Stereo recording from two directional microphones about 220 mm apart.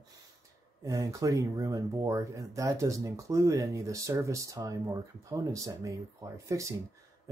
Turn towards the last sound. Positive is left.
turn(degrees=-15)  # may be behind; listen again after turning